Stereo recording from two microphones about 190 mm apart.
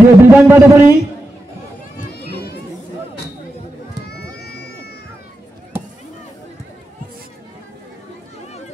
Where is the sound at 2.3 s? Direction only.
60° left (ahead or behind).